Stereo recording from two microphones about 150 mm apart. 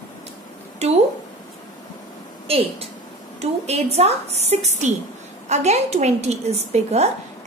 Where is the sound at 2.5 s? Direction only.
40° right (ahead or behind).